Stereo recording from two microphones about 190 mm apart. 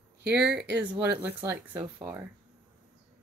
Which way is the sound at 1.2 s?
10° right (ahead or behind).